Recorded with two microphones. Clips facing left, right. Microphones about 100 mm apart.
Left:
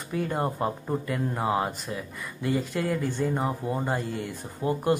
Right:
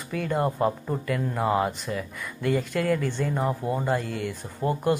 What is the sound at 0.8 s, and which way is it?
Speech, 15° left (ahead or behind).